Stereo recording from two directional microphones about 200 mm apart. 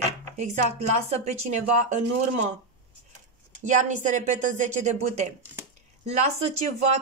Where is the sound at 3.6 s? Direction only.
40° right (ahead or behind).